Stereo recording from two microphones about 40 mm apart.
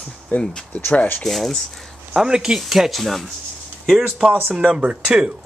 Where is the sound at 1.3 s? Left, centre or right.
Centre.